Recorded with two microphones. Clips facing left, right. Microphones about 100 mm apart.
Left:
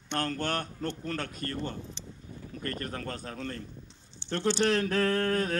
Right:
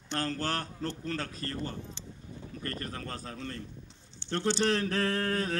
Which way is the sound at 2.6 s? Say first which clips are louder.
Left 3 dB; 45° left (ahead or behind).